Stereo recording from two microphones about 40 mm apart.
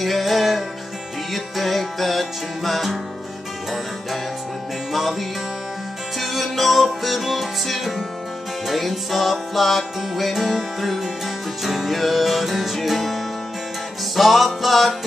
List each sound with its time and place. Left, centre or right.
0.0 s music: centre
6.1 s music: centre